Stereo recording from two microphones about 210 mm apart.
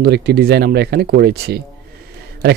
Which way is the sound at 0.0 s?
50° right (ahead or behind).